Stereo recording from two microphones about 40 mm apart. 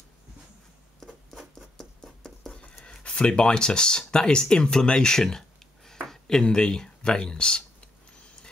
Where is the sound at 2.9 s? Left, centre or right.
Left.